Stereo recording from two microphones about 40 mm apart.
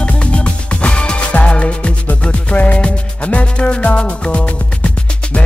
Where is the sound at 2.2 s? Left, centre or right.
Left.